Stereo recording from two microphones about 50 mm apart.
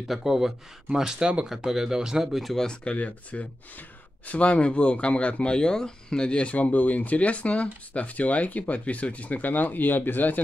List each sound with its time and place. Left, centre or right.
0.1 s speech: centre
2.4 s speech: centre; by 10.4 s left